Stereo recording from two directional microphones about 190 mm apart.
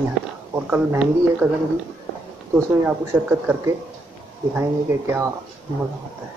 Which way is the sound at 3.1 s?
10° right (ahead or behind).